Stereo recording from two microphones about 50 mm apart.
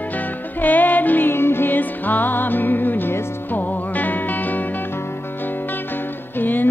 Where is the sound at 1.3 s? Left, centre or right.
Left.